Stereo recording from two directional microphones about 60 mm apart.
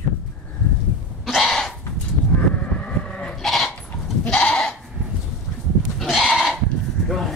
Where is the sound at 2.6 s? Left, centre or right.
Centre.